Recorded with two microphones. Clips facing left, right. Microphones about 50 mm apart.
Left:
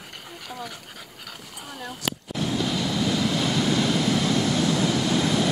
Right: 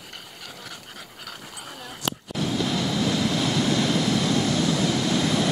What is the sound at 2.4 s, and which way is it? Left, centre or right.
Vehicle, centre.